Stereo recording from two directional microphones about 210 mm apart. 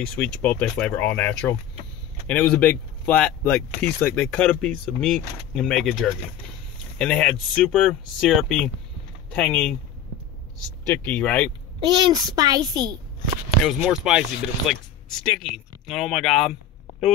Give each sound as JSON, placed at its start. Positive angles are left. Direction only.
{"t": 0.0, "sound": "speech", "side_deg": 5}
{"t": 11.1, "sound": "speech", "side_deg": 5}
{"t": 11.8, "sound": "a child's voice", "side_deg": -20}
{"t": 13.7, "sound": "speech", "side_deg": -5}